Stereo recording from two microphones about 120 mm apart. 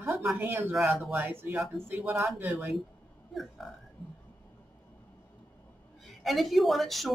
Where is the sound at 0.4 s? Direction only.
15° right (ahead or behind).